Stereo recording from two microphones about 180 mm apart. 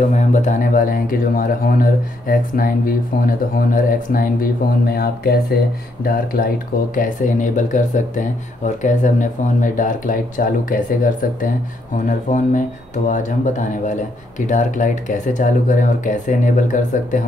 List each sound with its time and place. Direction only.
0.1 s speech: 45° left (ahead or behind)